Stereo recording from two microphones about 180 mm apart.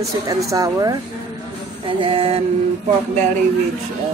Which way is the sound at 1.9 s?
30° right (ahead or behind).